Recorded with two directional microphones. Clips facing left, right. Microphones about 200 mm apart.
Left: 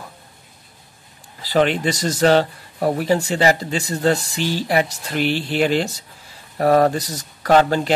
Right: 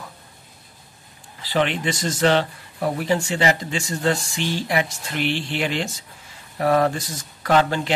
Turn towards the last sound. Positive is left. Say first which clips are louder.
# left 4 dB
turn(degrees=40)  # may be behind; listen again after turning